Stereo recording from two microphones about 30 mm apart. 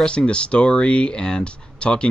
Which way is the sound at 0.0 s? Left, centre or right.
Left.